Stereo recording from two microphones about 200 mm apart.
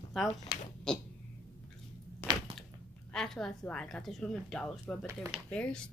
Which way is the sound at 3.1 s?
5° left (ahead or behind).